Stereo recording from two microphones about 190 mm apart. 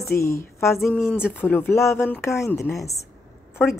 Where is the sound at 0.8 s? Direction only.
10° left (ahead or behind).